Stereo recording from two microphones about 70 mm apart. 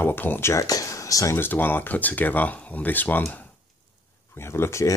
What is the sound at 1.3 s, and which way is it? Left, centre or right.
Speech, left.